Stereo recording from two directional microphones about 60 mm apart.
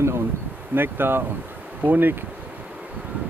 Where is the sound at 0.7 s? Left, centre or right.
Right.